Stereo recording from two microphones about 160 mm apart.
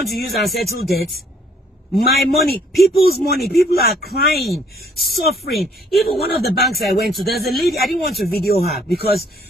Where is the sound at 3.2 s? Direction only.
75° left (ahead or behind).